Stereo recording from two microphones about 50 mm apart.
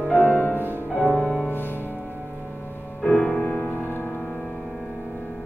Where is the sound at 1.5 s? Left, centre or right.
Left.